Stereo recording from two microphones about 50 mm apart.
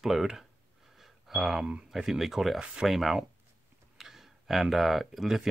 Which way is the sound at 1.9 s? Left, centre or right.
Centre.